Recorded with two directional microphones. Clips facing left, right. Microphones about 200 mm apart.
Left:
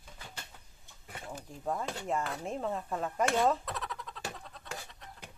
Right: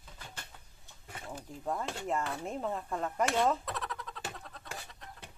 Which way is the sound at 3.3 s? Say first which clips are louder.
Left 1 dB; centre (ahead or behind).